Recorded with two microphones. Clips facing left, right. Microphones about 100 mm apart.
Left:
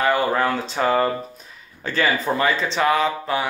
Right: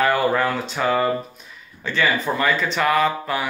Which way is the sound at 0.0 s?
25° left (ahead or behind).